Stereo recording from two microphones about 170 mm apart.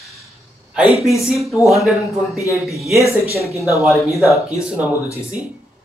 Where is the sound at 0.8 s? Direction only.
5° right (ahead or behind).